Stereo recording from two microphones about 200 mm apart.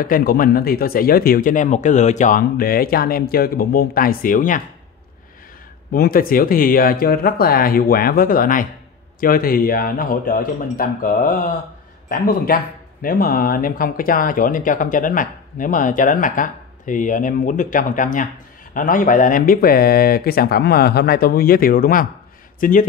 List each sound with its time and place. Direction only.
0.0 s speech: 45° left (ahead or behind)
5.9 s speech: 45° left (ahead or behind)